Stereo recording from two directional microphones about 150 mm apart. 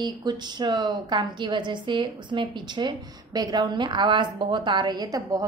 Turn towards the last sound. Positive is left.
turn(degrees=-25)  # may be behind; listen again after turning